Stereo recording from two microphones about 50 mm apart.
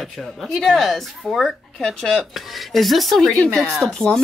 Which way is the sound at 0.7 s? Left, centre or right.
Centre.